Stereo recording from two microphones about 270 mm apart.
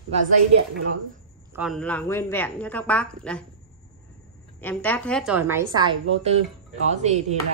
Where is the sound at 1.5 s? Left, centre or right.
Centre.